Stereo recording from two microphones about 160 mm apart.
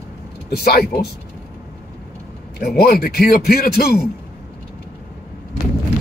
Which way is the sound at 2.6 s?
75° left (ahead or behind).